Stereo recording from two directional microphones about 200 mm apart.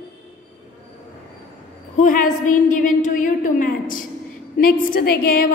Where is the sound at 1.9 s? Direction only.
40° left (ahead or behind).